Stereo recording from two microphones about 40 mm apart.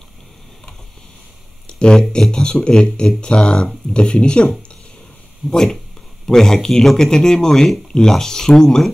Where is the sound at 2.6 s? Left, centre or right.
Left.